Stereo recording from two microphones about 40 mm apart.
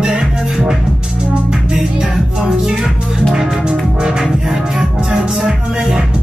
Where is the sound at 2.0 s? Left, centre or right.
Centre.